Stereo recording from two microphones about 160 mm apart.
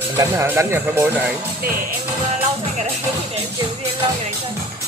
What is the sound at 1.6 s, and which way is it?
Speech, 65° right (ahead or behind).